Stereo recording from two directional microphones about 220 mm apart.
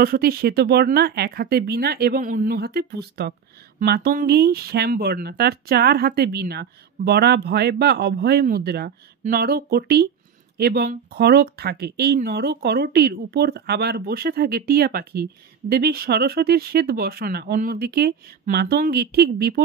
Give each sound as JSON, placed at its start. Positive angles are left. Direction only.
{"t": 0.0, "sound": "speech", "side_deg": -45}